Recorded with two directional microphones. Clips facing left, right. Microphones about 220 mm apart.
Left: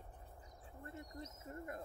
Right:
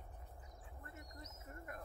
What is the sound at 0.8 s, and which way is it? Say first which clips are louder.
Speech: left 7 dB; 30° left (ahead or behind).